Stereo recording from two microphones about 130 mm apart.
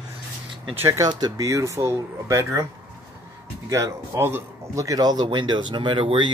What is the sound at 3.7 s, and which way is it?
Speech, 20° right (ahead or behind).